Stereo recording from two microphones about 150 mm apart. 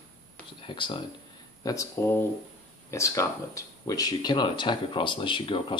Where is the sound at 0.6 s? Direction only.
35° left (ahead or behind).